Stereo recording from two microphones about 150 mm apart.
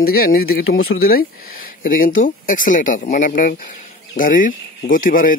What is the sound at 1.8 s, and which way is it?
Speech, 65° left (ahead or behind).